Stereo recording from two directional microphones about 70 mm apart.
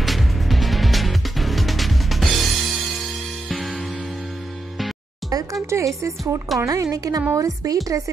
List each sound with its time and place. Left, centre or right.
0.0 s music: centre
5.3 s a woman's voice: right